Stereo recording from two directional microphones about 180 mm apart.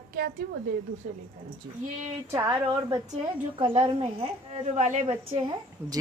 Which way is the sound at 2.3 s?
15° right (ahead or behind).